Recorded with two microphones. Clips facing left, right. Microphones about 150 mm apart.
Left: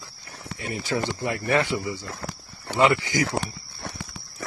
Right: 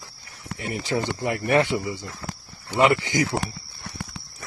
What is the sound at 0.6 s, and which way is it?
Speech, 25° right (ahead or behind).